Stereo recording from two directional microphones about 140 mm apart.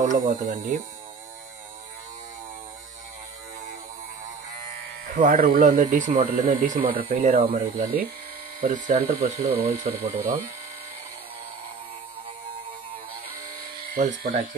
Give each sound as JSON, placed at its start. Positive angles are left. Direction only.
{"t": 0.0, "sound": "speech", "side_deg": -65}
{"t": 5.1, "sound": "speech", "side_deg": -75}
{"t": 8.5, "sound": "speech", "side_deg": -70}
{"t": 9.6, "sound": "speech", "side_deg": -90}
{"t": 13.9, "sound": "speech", "side_deg": -80}